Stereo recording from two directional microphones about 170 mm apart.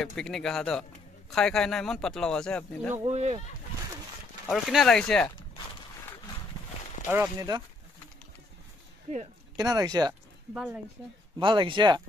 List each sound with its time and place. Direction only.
0.0 s speech: 5° left (ahead or behind)
3.1 s speech: 40° right (ahead or behind)
4.5 s speech: centre (ahead or behind)
7.1 s speech: 15° right (ahead or behind)
9.6 s speech: 20° right (ahead or behind)
10.5 s speech: 5° right (ahead or behind)
11.3 s speech: 30° right (ahead or behind)